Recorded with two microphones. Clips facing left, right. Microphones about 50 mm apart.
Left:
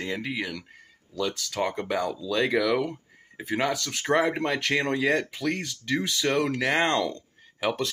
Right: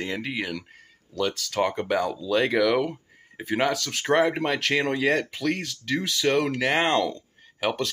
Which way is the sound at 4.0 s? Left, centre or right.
Centre.